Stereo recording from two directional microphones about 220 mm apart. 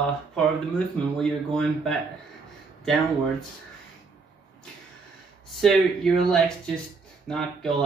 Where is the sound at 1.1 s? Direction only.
5° left (ahead or behind).